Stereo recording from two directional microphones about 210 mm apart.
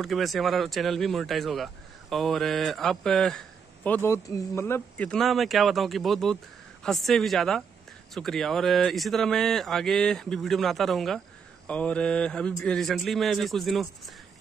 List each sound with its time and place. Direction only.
0.0 s speech: centre (ahead or behind)